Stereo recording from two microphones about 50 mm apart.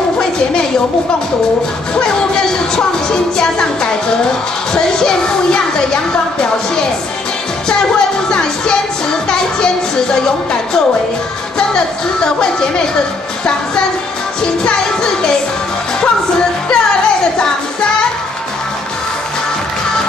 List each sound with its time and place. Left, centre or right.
2.0 s music: centre
8.3 s music: centre
10.1 s speech: centre
14.4 s speech: centre
16.0 s music: centre